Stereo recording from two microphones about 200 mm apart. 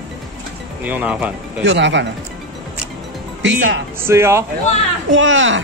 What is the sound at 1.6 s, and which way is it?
Speech, 65° right (ahead or behind).